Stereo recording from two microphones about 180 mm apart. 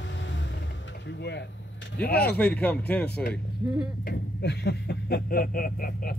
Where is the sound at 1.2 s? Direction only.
70° left (ahead or behind).